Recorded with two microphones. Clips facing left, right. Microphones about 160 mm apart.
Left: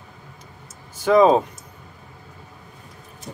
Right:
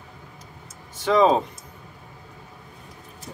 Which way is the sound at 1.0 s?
5° left (ahead or behind).